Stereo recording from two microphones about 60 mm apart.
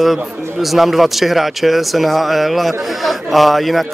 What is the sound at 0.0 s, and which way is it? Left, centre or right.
A man's voice, centre.